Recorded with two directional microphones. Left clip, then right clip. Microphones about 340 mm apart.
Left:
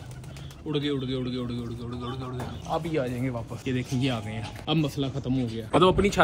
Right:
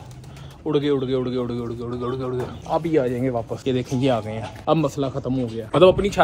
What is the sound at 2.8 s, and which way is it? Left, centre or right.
Speech, centre.